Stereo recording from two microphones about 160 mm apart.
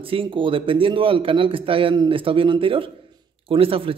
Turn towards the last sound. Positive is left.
turn(degrees=-35)  # may be behind; listen again after turning